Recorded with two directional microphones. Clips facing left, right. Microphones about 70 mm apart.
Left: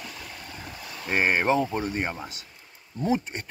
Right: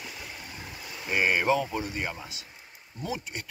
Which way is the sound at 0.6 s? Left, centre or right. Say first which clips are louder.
Left 2 dB; centre.